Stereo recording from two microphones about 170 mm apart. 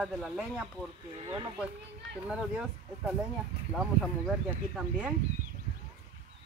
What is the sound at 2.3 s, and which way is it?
A woman's voice, 5° right (ahead or behind).